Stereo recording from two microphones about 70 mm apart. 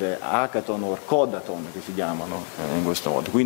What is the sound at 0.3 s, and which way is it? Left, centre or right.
Speech, centre.